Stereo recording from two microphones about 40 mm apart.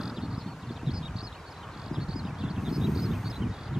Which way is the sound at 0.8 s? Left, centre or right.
Centre.